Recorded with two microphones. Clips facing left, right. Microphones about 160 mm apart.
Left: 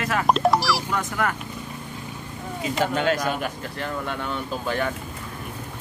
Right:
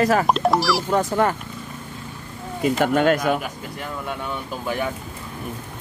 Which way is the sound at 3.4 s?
10° right (ahead or behind).